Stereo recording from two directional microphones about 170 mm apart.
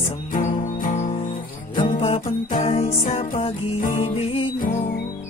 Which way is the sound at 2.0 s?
35° left (ahead or behind).